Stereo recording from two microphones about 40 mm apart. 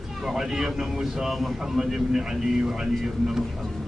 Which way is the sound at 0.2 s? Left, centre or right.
Centre.